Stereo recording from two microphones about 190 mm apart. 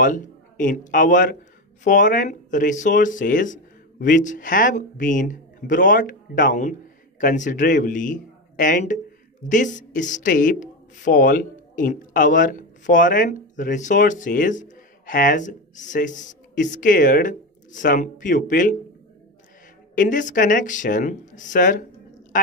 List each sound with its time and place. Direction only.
0.0 s a man's voice: 45° left (ahead or behind)
20.0 s speech: 45° left (ahead or behind)